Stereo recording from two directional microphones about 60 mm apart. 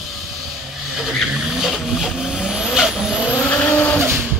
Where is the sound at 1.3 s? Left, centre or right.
Centre.